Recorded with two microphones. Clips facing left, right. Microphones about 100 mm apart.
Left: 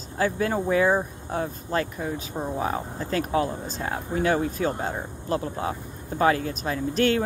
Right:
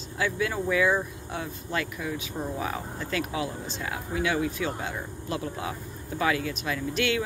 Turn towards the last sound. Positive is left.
turn(degrees=40)  # may be behind; listen again after turning